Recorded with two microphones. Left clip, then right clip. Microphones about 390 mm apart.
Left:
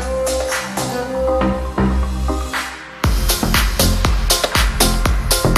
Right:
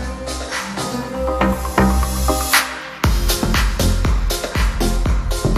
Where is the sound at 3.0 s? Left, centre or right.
Centre.